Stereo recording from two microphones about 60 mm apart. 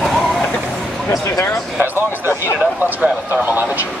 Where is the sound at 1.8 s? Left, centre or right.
Right.